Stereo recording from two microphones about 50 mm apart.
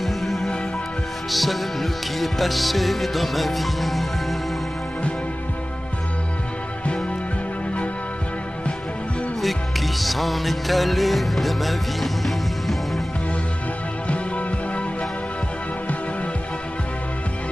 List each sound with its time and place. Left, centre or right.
0.0 s music: centre
9.4 s music: centre
14.0 s music: left